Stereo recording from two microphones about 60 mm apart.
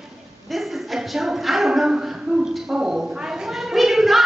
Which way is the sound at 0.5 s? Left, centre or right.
Centre.